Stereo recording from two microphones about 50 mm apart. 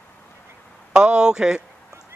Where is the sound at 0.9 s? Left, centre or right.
Centre.